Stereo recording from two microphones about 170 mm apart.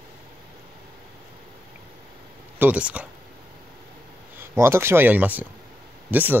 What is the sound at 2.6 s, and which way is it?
Speech, 10° right (ahead or behind).